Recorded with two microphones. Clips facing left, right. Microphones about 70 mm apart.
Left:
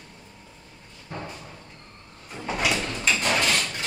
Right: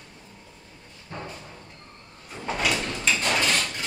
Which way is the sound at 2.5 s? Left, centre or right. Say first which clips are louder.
Even; centre.